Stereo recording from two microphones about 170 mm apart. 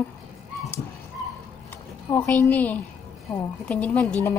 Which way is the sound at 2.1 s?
15° left (ahead or behind).